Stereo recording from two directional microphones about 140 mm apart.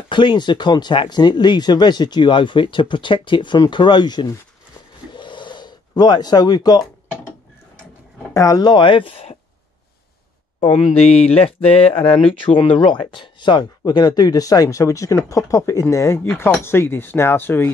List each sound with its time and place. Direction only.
0.1 s speech: 35° left (ahead or behind)
5.1 s gasp: 35° left (ahead or behind)
8.3 s speech: 25° left (ahead or behind); by 9.4 s 40° left (ahead or behind)
10.9 s speech: 50° left (ahead or behind); by 17.7 s 15° left (ahead or behind)